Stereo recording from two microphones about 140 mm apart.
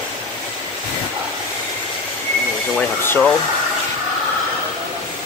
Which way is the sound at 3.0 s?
15° left (ahead or behind).